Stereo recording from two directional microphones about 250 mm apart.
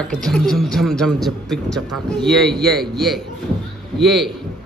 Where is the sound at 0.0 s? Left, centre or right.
Centre.